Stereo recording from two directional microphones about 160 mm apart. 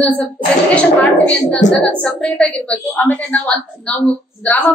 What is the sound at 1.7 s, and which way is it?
A woman's voice, 5° left (ahead or behind).